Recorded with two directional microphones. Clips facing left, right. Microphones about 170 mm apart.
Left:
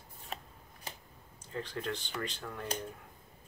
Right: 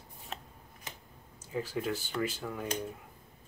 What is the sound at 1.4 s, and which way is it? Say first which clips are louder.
Speech: right 4 dB; 5° right (ahead or behind).